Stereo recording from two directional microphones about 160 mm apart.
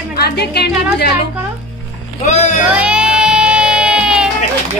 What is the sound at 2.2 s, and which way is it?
Speech, 45° left (ahead or behind).